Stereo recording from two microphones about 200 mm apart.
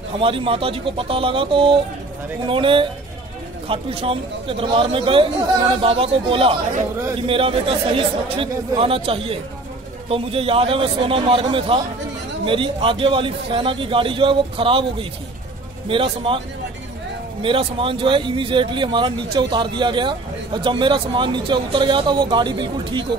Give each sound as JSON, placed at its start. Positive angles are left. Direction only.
{"t": 0.2, "sound": "a man's voice", "side_deg": -25}
{"t": 17.4, "sound": "a man's voice", "side_deg": -25}